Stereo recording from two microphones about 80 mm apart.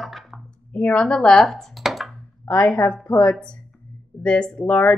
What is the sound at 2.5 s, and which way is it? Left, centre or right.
Speech, centre.